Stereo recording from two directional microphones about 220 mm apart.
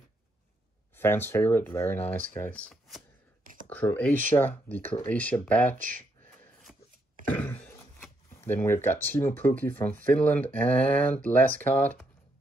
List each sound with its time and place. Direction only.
0.9 s speech: 10° left (ahead or behind)
5.8 s speech: 35° right (ahead or behind)
6.4 s a sound: centre (ahead or behind)
7.2 s speech: 5° left (ahead or behind)